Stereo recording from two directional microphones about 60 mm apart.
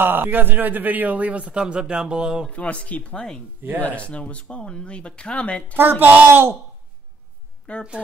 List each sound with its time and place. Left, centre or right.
0.0 s a man's voice: right; by 2.4 s centre
2.5 s speech: left
5.8 s speech: right
7.7 s speech: centre